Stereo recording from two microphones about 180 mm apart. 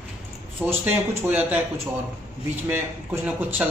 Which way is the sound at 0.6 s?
10° right (ahead or behind).